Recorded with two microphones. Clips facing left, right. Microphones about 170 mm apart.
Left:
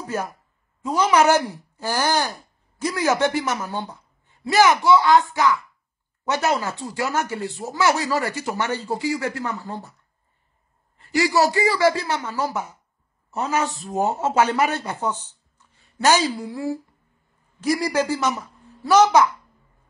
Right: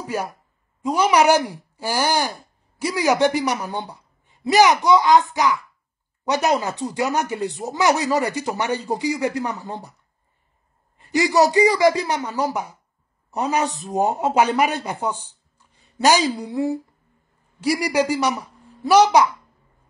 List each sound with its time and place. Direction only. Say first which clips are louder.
0.0 s speech: right 1 dB; 15° right (ahead or behind)
11.0 s a woman's voice: right 2 dB; 20° right (ahead or behind)